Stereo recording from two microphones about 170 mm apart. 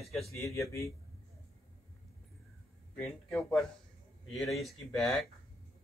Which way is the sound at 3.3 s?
Centre (ahead or behind).